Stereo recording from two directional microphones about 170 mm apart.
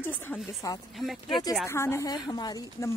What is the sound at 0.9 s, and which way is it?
Speech, centre (ahead or behind).